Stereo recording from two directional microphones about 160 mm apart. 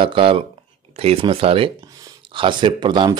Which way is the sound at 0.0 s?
35° right (ahead or behind).